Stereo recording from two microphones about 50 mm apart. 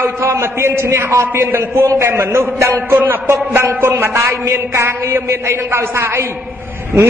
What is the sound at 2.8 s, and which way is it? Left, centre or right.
Speech, right.